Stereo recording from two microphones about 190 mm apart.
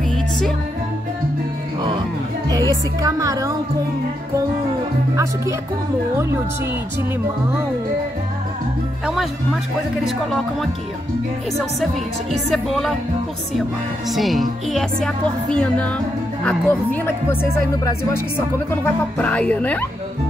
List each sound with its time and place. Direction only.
2.5 s speech: 20° right (ahead or behind)
5.1 s speech: 15° right (ahead or behind)
9.0 s speech: centre (ahead or behind)
11.8 s a woman's voice: centre (ahead or behind)